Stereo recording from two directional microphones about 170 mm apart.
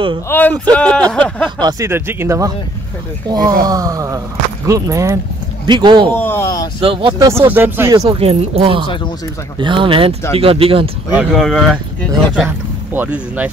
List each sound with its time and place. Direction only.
0.3 s speech: 10° left (ahead or behind)
1.6 s speech: 20° right (ahead or behind)
3.3 s wail: 25° right (ahead or behind)
6.1 s speech: 15° left (ahead or behind)
6.8 s speech: 30° right (ahead or behind)
7.2 s speech: 15° right (ahead or behind)
8.1 s speech: 35° right (ahead or behind)
8.8 s speech: 30° left (ahead or behind)
9.6 s wail: 30° right (ahead or behind)
10.3 s speech: 35° right (ahead or behind)
11.1 s speech: centre (ahead or behind)